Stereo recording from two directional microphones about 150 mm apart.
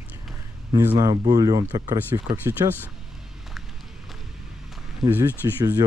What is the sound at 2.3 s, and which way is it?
Speech, 15° right (ahead or behind).